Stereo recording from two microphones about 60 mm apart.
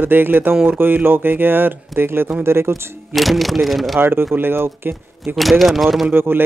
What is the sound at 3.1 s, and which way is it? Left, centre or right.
Speech, centre.